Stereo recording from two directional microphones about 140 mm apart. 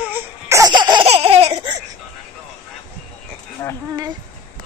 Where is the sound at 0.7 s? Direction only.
30° right (ahead or behind).